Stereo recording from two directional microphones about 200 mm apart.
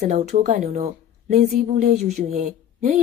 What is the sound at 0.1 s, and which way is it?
A woman's voice, 35° right (ahead or behind).